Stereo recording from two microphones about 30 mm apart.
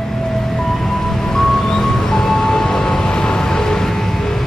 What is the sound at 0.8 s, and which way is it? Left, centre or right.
Music, centre.